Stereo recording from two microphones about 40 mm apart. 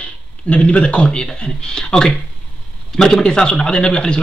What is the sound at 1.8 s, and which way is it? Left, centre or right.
Speech, centre.